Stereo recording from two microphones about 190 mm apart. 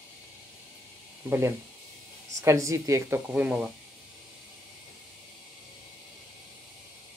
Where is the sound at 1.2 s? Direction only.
10° right (ahead or behind).